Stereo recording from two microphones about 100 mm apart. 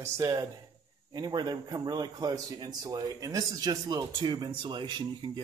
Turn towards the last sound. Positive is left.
turn(degrees=-50)  # may be behind; listen again after turning